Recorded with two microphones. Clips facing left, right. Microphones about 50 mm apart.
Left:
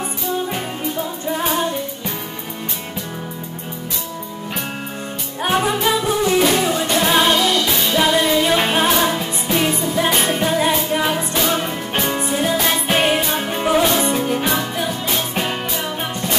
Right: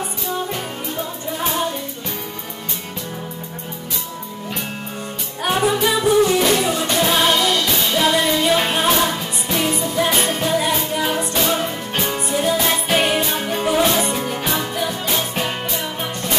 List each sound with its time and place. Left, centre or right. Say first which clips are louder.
5.5 s music: even; centre
10.2 s music: left 2 dB; centre
11.1 s music: left 1 dB; centre